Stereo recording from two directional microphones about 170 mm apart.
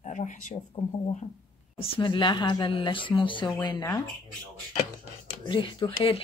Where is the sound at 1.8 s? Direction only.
30° left (ahead or behind).